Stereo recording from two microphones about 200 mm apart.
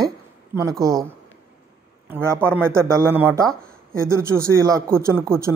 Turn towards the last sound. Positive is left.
turn(degrees=-15)  # may be behind; listen again after turning